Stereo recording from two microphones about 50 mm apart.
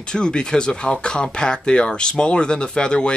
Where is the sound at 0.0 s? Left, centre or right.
Centre.